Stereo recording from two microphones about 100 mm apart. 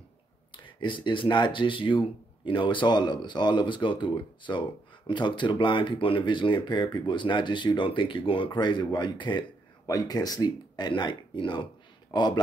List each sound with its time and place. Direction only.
0.7 s speech: 55° left (ahead or behind)
9.8 s speech: 40° left (ahead or behind)